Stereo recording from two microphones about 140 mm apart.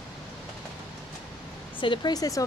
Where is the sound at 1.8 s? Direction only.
35° left (ahead or behind).